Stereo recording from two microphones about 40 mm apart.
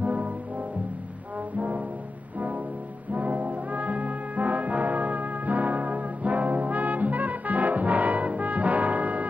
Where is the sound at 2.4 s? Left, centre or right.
Right.